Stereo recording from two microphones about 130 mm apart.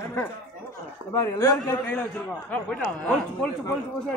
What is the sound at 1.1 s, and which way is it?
Speech, 25° left (ahead or behind).